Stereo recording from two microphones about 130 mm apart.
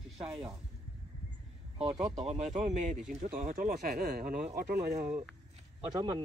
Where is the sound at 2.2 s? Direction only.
60° right (ahead or behind).